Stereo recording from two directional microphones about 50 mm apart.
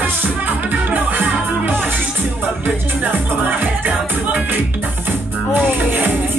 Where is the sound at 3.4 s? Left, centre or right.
Right.